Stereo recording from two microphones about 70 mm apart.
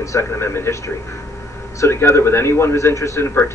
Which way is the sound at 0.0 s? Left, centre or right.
Left.